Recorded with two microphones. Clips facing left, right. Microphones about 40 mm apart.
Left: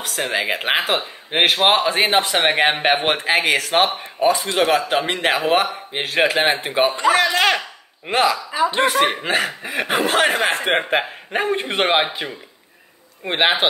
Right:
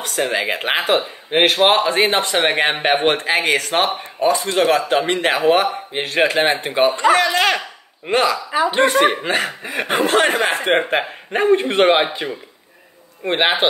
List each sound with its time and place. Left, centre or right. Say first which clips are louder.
0.0 s speech: right 2 dB; centre
8.5 s speech: right 1 dB; right
8.7 s speech: right 4 dB; centre